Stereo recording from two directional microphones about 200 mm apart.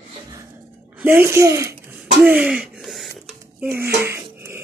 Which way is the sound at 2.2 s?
5° right (ahead or behind).